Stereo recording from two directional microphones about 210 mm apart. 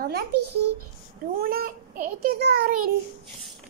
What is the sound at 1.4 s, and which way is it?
A child's voice, 45° right (ahead or behind).